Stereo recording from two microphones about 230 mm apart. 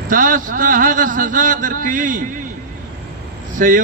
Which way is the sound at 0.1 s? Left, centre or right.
Right.